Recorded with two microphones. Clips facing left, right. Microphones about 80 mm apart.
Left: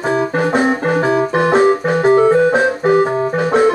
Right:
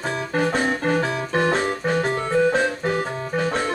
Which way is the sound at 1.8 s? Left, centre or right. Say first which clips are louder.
Left 11 dB; left.